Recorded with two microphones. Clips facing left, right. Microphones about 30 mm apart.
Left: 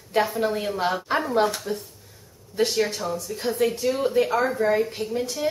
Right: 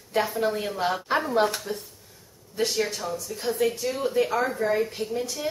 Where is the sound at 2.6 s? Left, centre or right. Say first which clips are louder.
Left 3 dB; centre.